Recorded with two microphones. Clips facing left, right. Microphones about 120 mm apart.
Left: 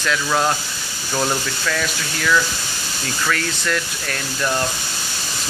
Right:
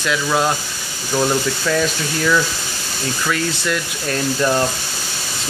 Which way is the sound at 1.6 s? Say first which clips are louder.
Right 5 dB; 25° right (ahead or behind).